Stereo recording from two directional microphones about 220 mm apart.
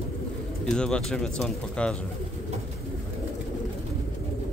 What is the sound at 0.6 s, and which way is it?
Speech, 5° left (ahead or behind).